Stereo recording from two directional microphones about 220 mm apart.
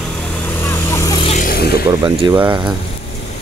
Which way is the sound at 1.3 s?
40° left (ahead or behind).